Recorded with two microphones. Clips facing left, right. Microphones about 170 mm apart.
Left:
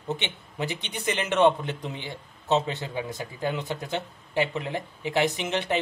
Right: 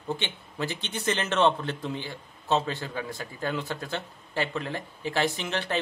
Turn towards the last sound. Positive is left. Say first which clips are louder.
# left 3 dB
turn(degrees=20)  # may be behind; listen again after turning